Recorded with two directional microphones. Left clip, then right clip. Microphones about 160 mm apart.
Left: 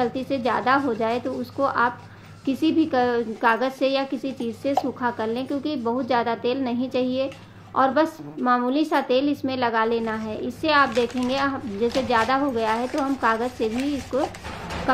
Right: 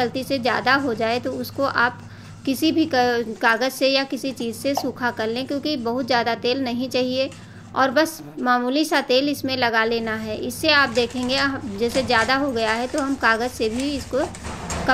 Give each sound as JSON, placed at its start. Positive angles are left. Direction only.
{"t": 0.0, "sound": "a woman's voice", "side_deg": -15}